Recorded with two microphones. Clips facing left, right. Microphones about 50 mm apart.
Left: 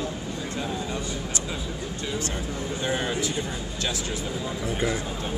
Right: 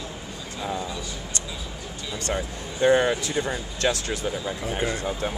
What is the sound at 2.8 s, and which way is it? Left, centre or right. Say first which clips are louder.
Speech: right 9 dB; right.